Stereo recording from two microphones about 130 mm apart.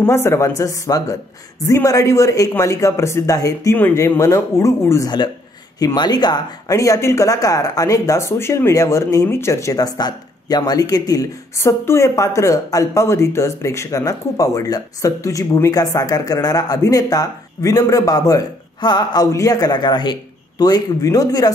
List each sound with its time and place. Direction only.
0.0 s speech: 20° left (ahead or behind)